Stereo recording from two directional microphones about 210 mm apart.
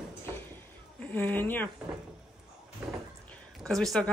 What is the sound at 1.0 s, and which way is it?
Speech, 10° left (ahead or behind).